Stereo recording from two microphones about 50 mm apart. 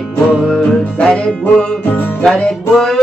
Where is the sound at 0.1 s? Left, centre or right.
Centre.